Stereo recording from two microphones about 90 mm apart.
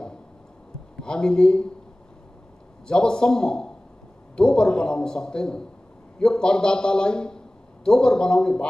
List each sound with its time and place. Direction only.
1.0 s a man's voice: 10° left (ahead or behind)
2.9 s a man's voice: 10° left (ahead or behind)